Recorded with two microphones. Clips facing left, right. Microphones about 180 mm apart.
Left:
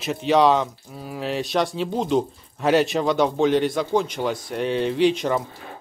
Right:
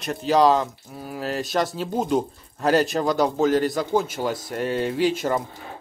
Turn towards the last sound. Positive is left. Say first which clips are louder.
# left 2 dB
turn(degrees=-5)  # may be behind; listen again after turning